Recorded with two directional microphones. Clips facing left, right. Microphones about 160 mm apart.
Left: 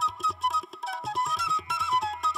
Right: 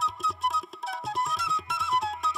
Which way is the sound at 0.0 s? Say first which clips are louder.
Even; centre (ahead or behind).